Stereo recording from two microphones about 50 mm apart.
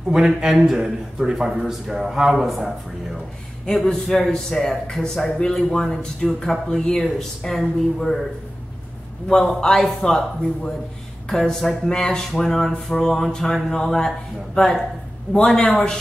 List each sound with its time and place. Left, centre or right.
0.1 s a man's voice: centre
3.6 s speech: centre
9.3 s speech: centre
11.2 s speech: centre